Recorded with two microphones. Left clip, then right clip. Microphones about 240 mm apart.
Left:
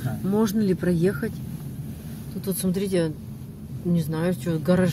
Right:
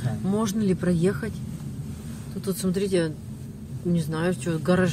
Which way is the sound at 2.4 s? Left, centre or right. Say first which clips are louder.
Right 1 dB; centre.